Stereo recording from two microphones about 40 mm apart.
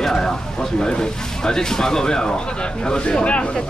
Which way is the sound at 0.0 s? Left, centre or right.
Centre.